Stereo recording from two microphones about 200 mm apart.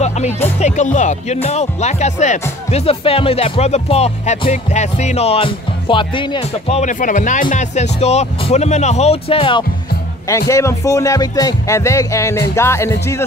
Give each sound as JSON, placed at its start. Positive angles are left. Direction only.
{"t": 0.6, "sound": "speech", "side_deg": 35}
{"t": 6.8, "sound": "speech", "side_deg": 40}
{"t": 10.5, "sound": "speech", "side_deg": 15}